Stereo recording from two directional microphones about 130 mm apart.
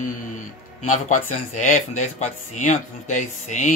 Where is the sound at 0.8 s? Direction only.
75° left (ahead or behind).